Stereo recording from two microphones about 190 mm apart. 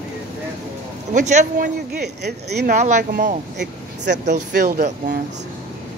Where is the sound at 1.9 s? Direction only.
60° right (ahead or behind).